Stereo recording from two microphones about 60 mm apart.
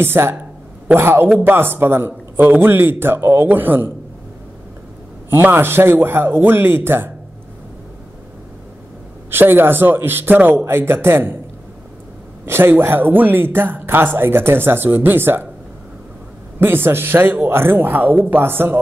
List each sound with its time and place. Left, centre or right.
0.0 s speech: right
5.3 s speech: right
9.3 s speech: right
12.4 s speech: right
16.5 s speech: right